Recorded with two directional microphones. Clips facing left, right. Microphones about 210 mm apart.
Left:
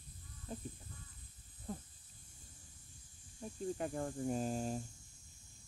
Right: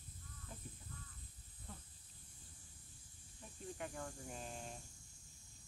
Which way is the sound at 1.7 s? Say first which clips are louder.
Left 11 dB; 40° left (ahead or behind).